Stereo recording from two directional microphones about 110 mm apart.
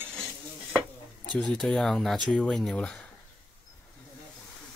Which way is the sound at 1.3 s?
5° left (ahead or behind).